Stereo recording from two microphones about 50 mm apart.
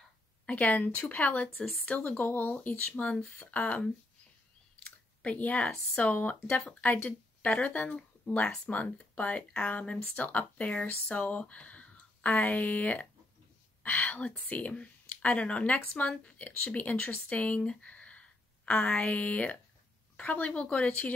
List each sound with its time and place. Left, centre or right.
0.5 s speech: left
2.5 s speech: left
4.8 s chewing: left
5.9 s speech: left